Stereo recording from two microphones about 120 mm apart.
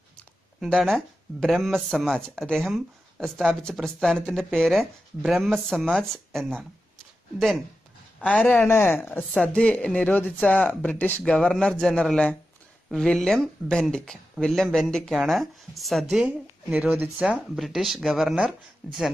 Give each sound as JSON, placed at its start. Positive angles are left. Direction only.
{"t": 0.6, "sound": "speech", "side_deg": 5}
{"t": 8.2, "sound": "speech", "side_deg": 10}
{"t": 9.3, "sound": "speech", "side_deg": 5}
{"t": 16.3, "sound": "speech", "side_deg": -15}
{"t": 17.2, "sound": "speech", "side_deg": 0}